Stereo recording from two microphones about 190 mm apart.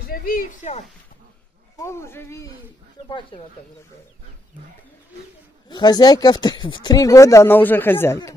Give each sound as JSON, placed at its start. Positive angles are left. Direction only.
{"t": 0.0, "sound": "speech", "side_deg": 50}
{"t": 1.8, "sound": "speech", "side_deg": 15}
{"t": 5.7, "sound": "speech", "side_deg": 20}